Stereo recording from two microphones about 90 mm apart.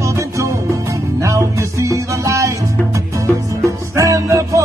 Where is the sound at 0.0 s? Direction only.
35° right (ahead or behind).